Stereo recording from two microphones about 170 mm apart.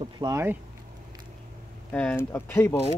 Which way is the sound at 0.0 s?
20° right (ahead or behind).